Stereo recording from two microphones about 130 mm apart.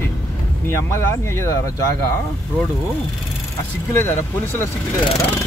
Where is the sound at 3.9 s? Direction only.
20° left (ahead or behind).